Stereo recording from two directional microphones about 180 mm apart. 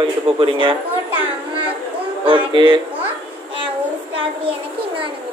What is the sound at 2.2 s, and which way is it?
Speech, 25° right (ahead or behind).